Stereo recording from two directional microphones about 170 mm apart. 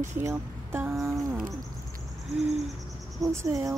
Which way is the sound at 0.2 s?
15° right (ahead or behind).